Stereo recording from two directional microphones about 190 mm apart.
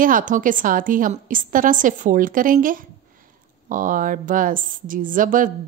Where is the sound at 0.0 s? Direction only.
45° right (ahead or behind).